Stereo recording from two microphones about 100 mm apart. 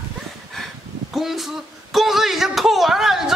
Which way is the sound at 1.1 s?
5° right (ahead or behind).